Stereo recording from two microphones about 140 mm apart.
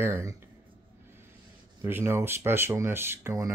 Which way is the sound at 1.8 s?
15° right (ahead or behind).